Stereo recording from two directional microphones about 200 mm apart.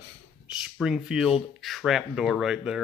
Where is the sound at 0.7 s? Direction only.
Centre (ahead or behind).